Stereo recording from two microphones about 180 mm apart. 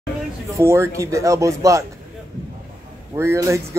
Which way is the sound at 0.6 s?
15° right (ahead or behind).